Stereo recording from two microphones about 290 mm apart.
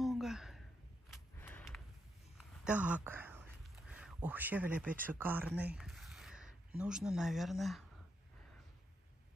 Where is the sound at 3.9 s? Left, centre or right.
Centre.